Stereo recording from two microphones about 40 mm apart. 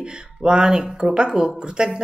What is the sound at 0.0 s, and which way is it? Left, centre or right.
Speech, right.